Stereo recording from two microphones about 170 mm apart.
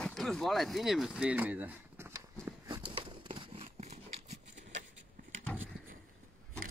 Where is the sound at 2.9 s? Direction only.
30° right (ahead or behind).